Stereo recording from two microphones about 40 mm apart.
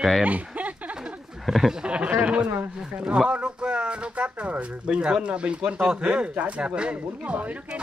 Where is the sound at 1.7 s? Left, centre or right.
Right.